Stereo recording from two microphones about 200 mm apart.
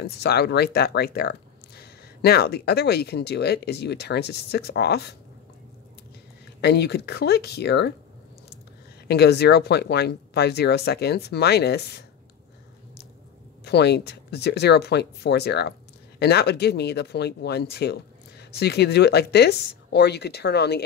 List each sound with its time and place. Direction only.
0.0 s speech: 55° left (ahead or behind)
6.6 s speech: 55° left (ahead or behind)
9.0 s speech: 55° left (ahead or behind)
13.7 s speech: 55° left (ahead or behind)